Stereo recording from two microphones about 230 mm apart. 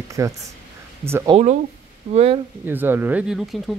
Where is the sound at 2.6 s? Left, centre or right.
Centre.